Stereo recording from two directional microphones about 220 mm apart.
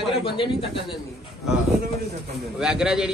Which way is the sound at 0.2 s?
25° left (ahead or behind).